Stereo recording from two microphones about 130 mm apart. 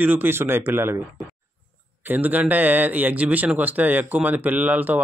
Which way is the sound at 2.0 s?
15° right (ahead or behind).